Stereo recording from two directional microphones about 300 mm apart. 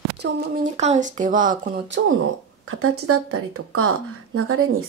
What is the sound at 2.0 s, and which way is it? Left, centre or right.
Speech, right.